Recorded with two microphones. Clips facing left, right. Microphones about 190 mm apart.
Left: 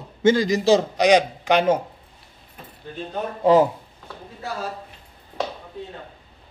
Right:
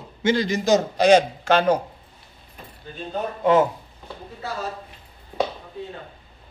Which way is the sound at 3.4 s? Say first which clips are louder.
Left 2 dB; 30° left (ahead or behind).